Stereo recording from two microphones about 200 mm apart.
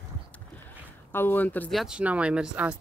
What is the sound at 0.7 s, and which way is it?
Speech, 10° left (ahead or behind).